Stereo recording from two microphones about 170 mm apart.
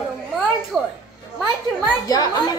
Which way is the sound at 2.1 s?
20° left (ahead or behind).